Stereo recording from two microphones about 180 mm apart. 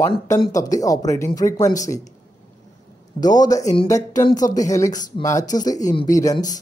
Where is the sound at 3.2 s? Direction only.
20° left (ahead or behind).